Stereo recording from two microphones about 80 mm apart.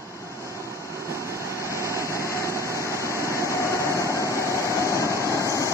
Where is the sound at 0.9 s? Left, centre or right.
Right.